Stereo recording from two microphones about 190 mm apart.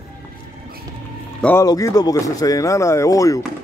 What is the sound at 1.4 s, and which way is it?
Speech, 15° left (ahead or behind).